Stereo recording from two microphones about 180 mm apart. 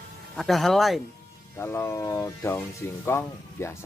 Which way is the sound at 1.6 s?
15° left (ahead or behind).